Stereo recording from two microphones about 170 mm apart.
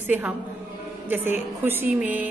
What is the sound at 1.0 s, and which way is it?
A woman's voice, 10° right (ahead or behind).